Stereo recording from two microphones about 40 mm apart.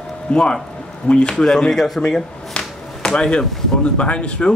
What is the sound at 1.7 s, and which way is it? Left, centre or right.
Speech, centre.